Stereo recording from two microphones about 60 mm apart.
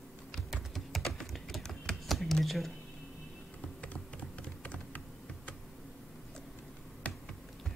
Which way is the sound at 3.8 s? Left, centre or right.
Left.